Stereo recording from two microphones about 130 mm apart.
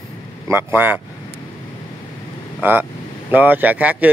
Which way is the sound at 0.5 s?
15° right (ahead or behind).